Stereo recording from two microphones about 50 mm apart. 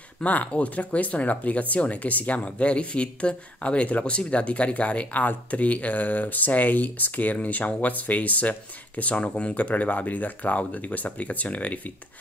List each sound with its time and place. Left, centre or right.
0.2 s speech: left